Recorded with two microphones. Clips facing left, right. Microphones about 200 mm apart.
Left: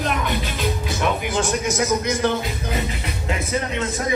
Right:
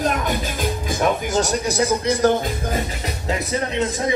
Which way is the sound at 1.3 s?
40° right (ahead or behind).